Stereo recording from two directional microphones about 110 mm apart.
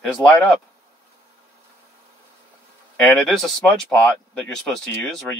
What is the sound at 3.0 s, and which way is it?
Speech, 15° left (ahead or behind).